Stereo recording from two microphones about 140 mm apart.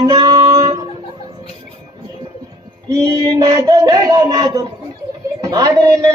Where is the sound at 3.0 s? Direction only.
30° right (ahead or behind).